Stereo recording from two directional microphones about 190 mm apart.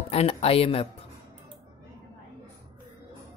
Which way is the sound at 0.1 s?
30° left (ahead or behind).